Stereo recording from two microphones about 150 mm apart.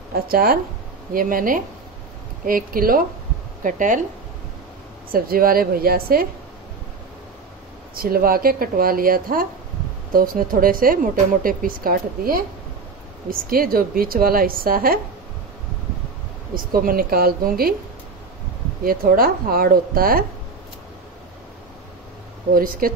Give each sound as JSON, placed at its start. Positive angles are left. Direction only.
{"t": 0.1, "sound": "speech", "side_deg": -85}
{"t": 1.1, "sound": "speech", "side_deg": -65}
{"t": 3.6, "sound": "speech", "side_deg": -60}
{"t": 5.1, "sound": "speech", "side_deg": -80}
{"t": 7.9, "sound": "speech", "side_deg": -75}
{"t": 16.5, "sound": "speech", "side_deg": -75}
{"t": 18.9, "sound": "speech", "side_deg": -75}
{"t": 22.5, "sound": "speech", "side_deg": -70}